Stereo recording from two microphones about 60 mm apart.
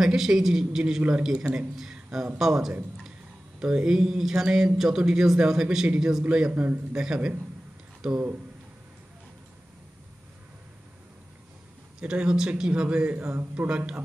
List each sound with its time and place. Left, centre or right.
0.0 s a man's voice: centre
6.5 s a man's voice: right
6.9 s speech: centre
12.0 s speech: centre